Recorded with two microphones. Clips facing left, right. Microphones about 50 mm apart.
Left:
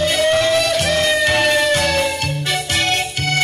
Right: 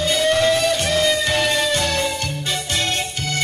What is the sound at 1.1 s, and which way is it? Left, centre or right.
Music, centre.